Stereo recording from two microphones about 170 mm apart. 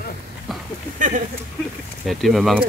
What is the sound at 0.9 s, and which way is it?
Speech, 50° right (ahead or behind).